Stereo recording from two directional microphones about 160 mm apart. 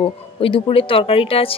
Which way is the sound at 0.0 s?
35° left (ahead or behind).